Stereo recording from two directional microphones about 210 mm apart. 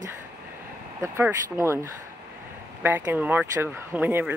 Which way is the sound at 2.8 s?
10° right (ahead or behind).